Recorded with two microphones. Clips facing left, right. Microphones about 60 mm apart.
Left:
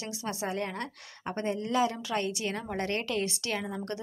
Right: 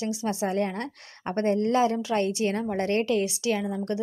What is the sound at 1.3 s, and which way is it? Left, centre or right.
Speech, right.